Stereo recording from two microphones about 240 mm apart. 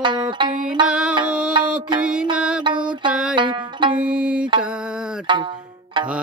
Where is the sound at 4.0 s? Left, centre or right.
Centre.